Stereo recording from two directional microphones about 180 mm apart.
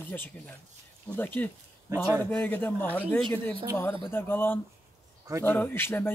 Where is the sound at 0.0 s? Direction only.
10° left (ahead or behind).